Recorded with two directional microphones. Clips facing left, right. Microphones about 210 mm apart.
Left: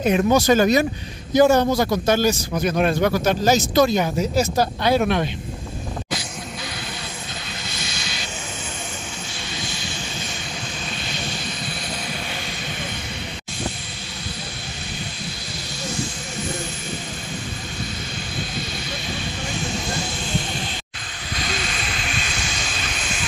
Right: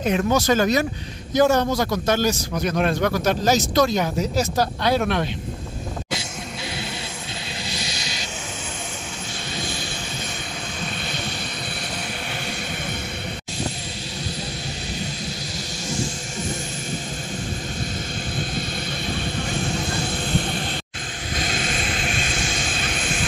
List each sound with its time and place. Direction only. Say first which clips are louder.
0.0 s a man's voice: left 3 dB; 10° left (ahead or behind)
7.7 s vehicle: right 2 dB; 35° right (ahead or behind)
19.9 s vehicle: right 2 dB; 55° right (ahead or behind)
21.4 s vehicle: right 2 dB; 50° right (ahead or behind)